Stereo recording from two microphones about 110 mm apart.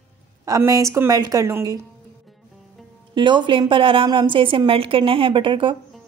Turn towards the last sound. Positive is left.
turn(degrees=-50)  # may be behind; listen again after turning